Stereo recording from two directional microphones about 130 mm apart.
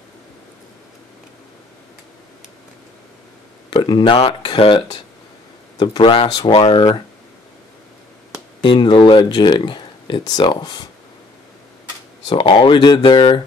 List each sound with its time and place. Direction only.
3.7 s speech: 40° left (ahead or behind)
8.6 s speech: 35° left (ahead or behind)
12.3 s speech: 40° left (ahead or behind)